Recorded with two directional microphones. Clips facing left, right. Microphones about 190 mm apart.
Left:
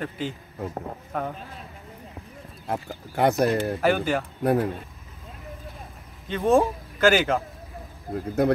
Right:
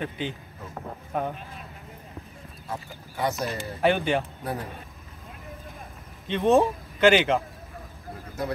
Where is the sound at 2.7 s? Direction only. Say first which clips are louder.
Left 6 dB; 60° left (ahead or behind).